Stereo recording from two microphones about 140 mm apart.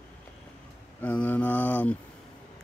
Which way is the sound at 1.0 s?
10° left (ahead or behind).